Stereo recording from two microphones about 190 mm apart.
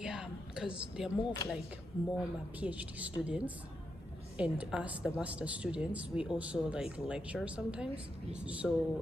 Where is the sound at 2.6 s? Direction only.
5° right (ahead or behind).